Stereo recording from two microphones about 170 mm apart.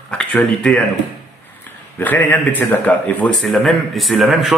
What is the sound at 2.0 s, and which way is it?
A man's voice, 10° left (ahead or behind).